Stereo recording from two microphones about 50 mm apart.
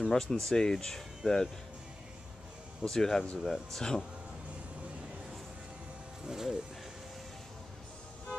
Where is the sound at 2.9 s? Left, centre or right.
Centre.